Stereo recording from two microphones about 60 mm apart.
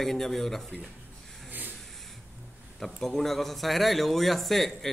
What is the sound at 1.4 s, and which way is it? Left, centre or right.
Vehicle, right.